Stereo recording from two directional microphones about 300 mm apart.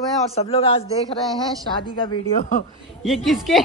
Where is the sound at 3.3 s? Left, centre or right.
Centre.